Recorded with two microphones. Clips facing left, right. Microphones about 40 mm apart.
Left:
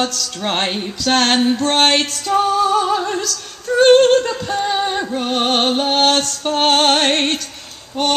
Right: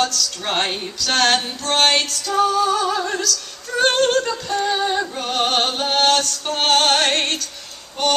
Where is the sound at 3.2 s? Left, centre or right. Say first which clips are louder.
Right 1 dB; left.